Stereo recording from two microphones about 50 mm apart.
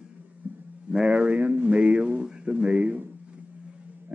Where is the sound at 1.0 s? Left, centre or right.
Right.